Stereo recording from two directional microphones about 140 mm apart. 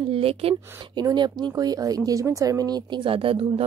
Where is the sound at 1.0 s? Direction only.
30° right (ahead or behind).